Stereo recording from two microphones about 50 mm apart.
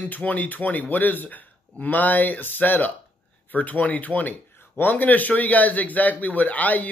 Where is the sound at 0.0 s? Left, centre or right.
Left.